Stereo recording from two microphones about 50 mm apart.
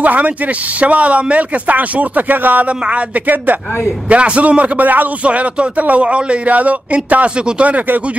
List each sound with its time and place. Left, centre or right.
0.0 s speech: right
4.1 s a man's voice: right